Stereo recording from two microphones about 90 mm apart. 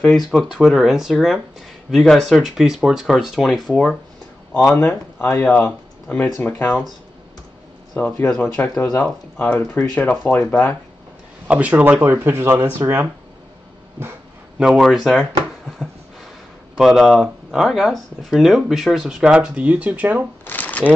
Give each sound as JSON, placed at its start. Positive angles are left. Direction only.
{"t": 0.3, "sound": "speech", "side_deg": 0}
{"t": 4.6, "sound": "speech", "side_deg": 25}
{"t": 7.9, "sound": "speech", "side_deg": 15}
{"t": 11.4, "sound": "speech", "side_deg": -15}
{"t": 14.6, "sound": "speech", "side_deg": -5}
{"t": 16.7, "sound": "speech", "side_deg": 0}
{"t": 20.4, "sound": "shuffling cards", "side_deg": 20}